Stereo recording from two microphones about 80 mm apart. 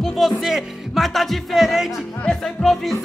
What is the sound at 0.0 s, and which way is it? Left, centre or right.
Music, centre.